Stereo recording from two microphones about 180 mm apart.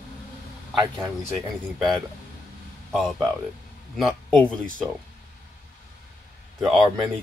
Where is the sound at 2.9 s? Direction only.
Centre (ahead or behind).